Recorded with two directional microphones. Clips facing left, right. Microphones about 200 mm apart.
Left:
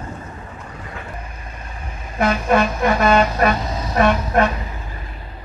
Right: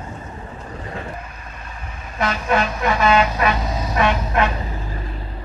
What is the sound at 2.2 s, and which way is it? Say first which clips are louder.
Vehicle: left 4 dB; 50° left (ahead or behind).